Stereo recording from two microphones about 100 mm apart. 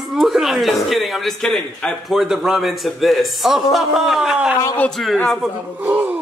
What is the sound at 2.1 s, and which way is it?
Speech, 5° right (ahead or behind).